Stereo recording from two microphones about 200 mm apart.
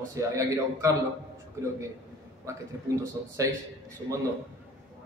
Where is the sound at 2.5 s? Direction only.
15° right (ahead or behind).